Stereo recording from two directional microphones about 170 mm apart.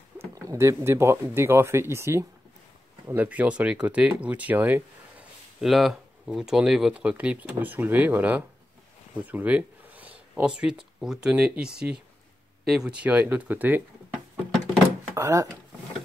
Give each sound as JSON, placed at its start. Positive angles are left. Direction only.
{"t": 0.2, "sound": "speech", "side_deg": -15}